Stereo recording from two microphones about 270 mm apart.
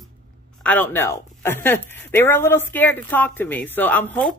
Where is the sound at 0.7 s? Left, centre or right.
Centre.